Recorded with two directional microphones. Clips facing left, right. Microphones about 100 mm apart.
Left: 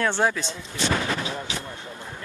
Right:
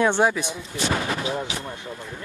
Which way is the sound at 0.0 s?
15° right (ahead or behind).